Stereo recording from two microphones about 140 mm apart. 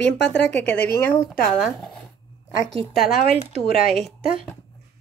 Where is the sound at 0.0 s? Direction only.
10° left (ahead or behind).